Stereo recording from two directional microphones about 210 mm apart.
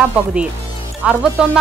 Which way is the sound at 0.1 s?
5° right (ahead or behind).